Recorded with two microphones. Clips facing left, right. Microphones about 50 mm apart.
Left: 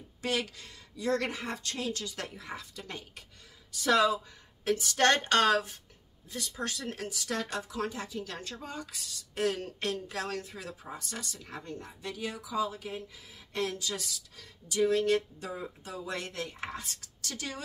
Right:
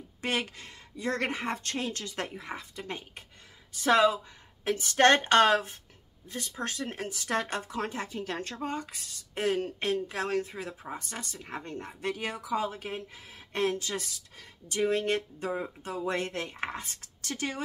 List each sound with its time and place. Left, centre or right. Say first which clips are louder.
0.2 s speech: right 1 dB; right